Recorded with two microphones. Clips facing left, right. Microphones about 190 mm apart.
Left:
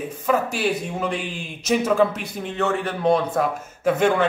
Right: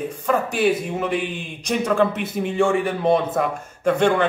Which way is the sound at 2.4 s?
10° right (ahead or behind).